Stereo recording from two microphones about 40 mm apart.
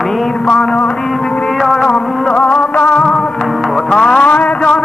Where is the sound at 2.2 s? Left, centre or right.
Left.